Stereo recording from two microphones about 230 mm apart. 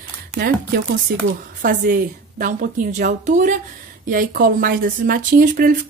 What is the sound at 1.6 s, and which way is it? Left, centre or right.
A woman's voice, right.